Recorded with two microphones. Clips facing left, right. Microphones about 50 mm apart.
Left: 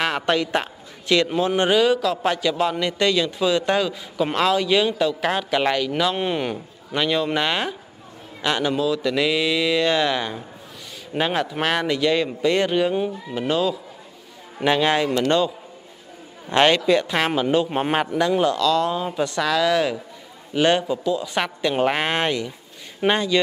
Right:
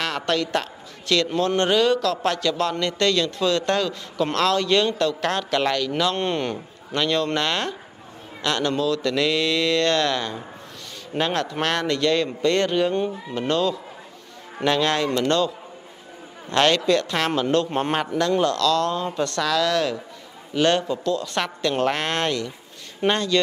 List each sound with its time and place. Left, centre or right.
0.0 s a man's voice: centre